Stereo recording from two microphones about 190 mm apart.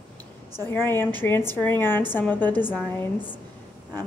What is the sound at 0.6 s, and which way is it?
A woman's voice, 10° left (ahead or behind).